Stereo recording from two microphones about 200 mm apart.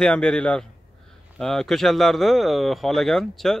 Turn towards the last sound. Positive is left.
turn(degrees=0)  # may be behind; listen again after turning